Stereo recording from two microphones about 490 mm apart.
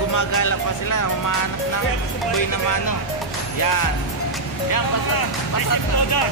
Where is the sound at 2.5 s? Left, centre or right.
Left.